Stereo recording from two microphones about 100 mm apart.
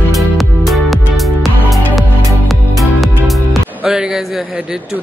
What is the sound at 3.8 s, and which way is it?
Speech, 10° right (ahead or behind).